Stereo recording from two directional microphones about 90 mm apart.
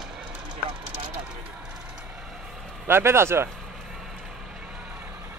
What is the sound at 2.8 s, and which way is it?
Speech, 25° right (ahead or behind).